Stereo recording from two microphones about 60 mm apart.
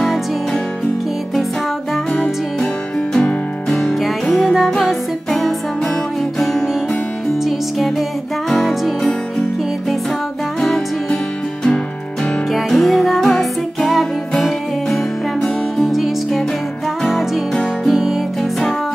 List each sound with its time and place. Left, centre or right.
0.0 s music: centre
3.2 s music: left
4.0 s music: centre
8.5 s music: centre
12.5 s music: centre
15.4 s music: centre
17.8 s music: centre